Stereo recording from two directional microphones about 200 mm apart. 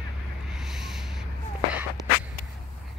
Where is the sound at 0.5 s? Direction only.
Centre (ahead or behind).